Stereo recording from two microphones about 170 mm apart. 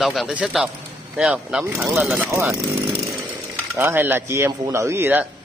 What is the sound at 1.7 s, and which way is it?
Speech, 15° right (ahead or behind).